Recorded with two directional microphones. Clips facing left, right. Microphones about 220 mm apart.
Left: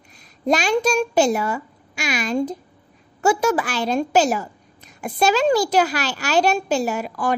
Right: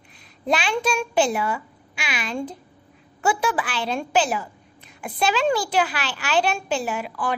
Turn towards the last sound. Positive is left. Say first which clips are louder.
# left 4 dB
turn(degrees=45)  # may be behind; listen again after turning